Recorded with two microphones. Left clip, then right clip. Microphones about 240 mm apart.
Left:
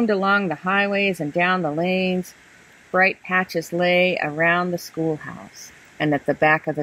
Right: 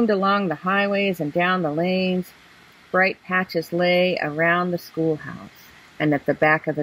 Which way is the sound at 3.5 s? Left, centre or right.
Centre.